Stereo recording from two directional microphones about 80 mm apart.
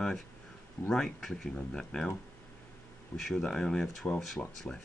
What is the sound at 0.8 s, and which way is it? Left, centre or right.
Speech, centre.